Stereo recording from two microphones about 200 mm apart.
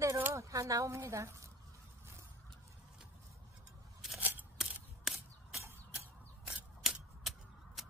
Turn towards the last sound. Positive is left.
turn(degrees=0)  # may be behind; listen again after turning